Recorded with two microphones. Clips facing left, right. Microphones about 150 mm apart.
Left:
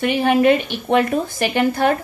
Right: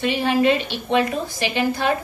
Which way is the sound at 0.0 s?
55° left (ahead or behind).